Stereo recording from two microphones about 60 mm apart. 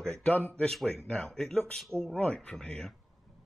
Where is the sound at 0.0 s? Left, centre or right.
Left.